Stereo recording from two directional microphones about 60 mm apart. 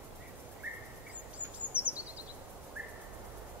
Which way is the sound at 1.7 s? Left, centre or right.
Right.